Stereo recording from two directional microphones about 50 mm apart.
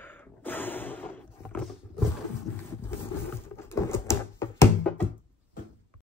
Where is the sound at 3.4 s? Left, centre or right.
Left.